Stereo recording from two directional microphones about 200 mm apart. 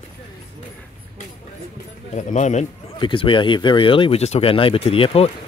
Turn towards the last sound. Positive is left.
turn(degrees=30)  # may be behind; listen again after turning